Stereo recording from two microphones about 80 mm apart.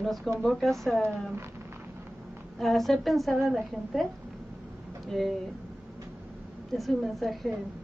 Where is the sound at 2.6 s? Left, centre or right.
Centre.